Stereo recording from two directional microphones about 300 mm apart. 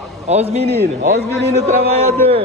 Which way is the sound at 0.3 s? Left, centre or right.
Right.